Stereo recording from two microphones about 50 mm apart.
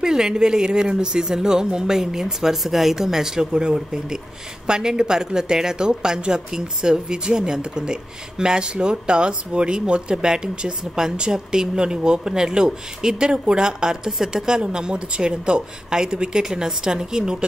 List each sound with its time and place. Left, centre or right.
0.0 s speech: centre